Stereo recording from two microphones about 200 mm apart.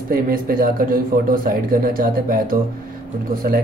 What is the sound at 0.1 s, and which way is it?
Speech, 45° right (ahead or behind).